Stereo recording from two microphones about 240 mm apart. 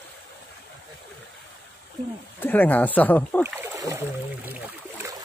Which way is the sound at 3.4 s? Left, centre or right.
Centre.